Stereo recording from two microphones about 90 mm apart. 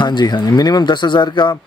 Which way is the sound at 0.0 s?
55° left (ahead or behind).